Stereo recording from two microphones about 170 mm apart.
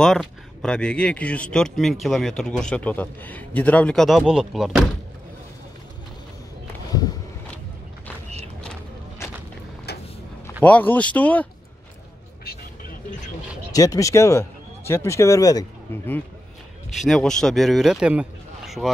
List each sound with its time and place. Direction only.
0.0 s speech: centre (ahead or behind)
6.9 s a sound: 25° left (ahead or behind)
9.9 s vehicle: 70° left (ahead or behind)
10.6 s speech: 10° left (ahead or behind)
13.7 s speech: 20° left (ahead or behind)
16.9 s speech: centre (ahead or behind)